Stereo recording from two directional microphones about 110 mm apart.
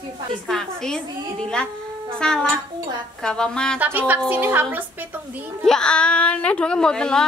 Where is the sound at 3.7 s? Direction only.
15° right (ahead or behind).